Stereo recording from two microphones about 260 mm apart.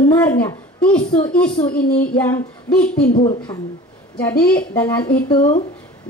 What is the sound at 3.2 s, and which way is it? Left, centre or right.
Speech, centre.